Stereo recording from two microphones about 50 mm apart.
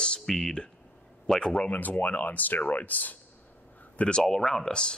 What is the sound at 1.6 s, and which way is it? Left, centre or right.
Speech, left.